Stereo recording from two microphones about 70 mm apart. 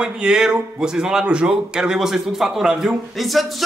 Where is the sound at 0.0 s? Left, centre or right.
Centre.